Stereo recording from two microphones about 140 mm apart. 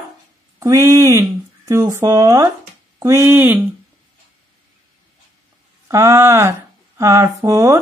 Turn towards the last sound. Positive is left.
turn(degrees=-20)  # may be behind; listen again after turning